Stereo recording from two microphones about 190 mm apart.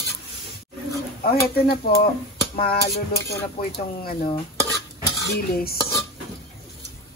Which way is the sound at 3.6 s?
50° left (ahead or behind).